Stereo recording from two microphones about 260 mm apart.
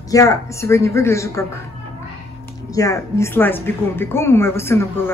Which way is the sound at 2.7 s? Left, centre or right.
Centre.